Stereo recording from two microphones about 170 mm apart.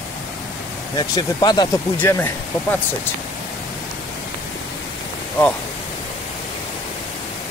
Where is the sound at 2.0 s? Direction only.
10° left (ahead or behind).